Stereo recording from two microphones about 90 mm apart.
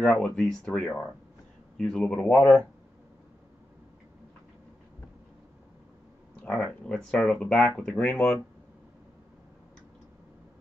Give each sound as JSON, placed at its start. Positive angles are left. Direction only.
{"t": 0.0, "sound": "speech", "side_deg": 15}
{"t": 1.8, "sound": "speech", "side_deg": 5}
{"t": 6.4, "sound": "speech", "side_deg": 15}
{"t": 7.8, "sound": "speech", "side_deg": 15}